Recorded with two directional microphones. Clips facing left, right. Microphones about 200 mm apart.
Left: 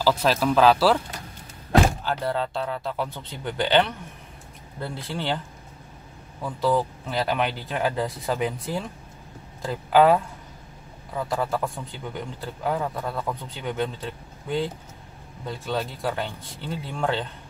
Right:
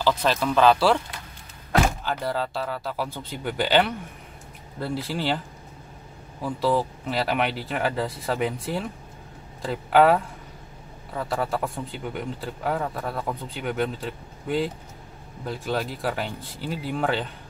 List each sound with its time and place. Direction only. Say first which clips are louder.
0.0 s a man's voice: left 1 dB; 5° left (ahead or behind)
2.0 s a man's voice: left 1 dB; 5° right (ahead or behind)
6.4 s a man's voice: even; centre (ahead or behind)